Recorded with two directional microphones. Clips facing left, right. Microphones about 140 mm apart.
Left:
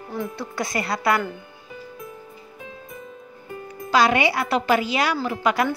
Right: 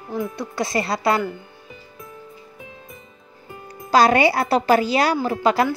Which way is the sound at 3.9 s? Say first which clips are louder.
Right 4 dB; 40° right (ahead or behind).